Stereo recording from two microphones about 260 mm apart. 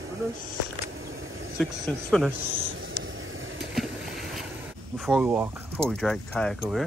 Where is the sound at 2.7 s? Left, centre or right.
Right.